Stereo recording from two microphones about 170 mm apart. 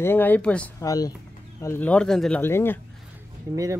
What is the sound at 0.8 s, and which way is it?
Speech, 20° left (ahead or behind).